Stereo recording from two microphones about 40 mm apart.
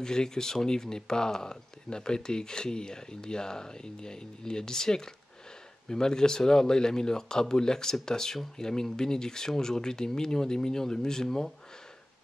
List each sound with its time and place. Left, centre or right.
0.0 s speech: centre